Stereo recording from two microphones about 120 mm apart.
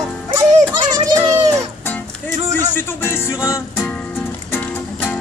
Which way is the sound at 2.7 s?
20° left (ahead or behind).